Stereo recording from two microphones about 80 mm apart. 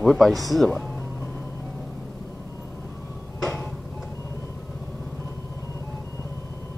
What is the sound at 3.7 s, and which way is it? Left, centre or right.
Tick-tock, centre.